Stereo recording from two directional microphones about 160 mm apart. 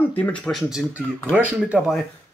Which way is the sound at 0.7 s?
5° right (ahead or behind).